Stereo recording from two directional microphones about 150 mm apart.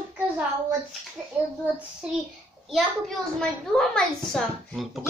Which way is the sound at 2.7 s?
Centre (ahead or behind).